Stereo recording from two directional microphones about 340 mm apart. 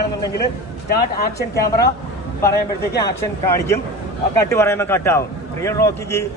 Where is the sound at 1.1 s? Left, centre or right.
Left.